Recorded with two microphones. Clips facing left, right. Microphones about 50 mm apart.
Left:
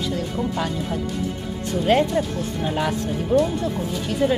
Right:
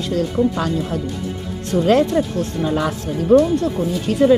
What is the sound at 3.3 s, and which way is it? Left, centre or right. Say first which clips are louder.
Speech: right 7 dB; right.